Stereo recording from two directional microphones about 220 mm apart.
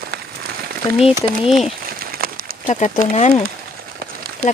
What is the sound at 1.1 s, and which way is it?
Speech, centre (ahead or behind).